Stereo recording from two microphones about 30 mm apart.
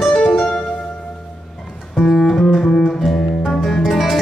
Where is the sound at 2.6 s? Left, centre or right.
Centre.